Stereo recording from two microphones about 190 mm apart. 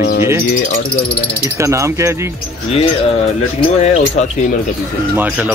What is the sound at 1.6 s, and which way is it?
Speech, 15° right (ahead or behind).